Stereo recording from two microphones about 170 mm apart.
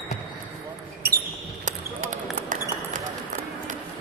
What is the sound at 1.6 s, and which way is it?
Basketball bounce, 45° right (ahead or behind).